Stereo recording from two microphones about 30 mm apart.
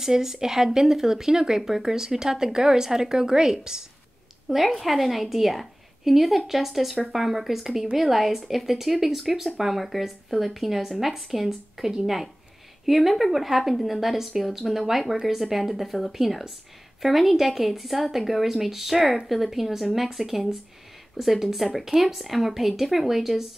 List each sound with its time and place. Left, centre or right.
0.0 s speech: centre
4.6 s a woman's voice: centre